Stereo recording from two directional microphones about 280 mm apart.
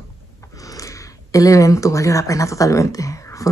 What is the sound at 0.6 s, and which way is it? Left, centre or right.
Speech, centre.